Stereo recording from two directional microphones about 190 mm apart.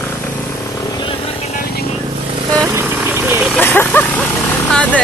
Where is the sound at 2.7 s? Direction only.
10° right (ahead or behind).